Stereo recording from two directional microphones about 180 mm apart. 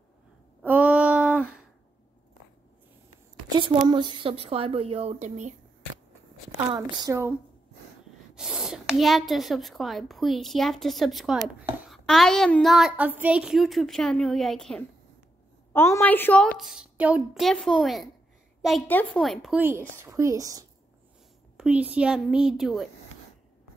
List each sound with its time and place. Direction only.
0.6 s a sound: 5° right (ahead or behind)
3.4 s a woman's voice: 25° right (ahead or behind); by 5.5 s 40° right (ahead or behind)
6.7 s speech: 20° right (ahead or behind)
8.4 s a woman's voice: 5° right (ahead or behind)
16.5 s a woman's voice: 5° right (ahead or behind)
20.0 s speech: 15° right (ahead or behind)
21.5 s a woman's voice: 5° right (ahead or behind)